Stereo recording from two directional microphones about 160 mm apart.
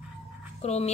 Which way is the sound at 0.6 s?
45° left (ahead or behind).